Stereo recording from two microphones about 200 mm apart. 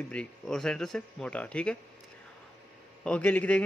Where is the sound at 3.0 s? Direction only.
5° left (ahead or behind).